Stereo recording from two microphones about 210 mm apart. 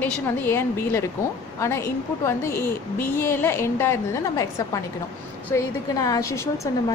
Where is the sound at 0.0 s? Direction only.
10° left (ahead or behind).